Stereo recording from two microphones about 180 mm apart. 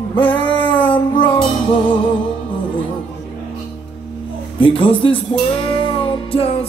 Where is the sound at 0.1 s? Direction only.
25° left (ahead or behind).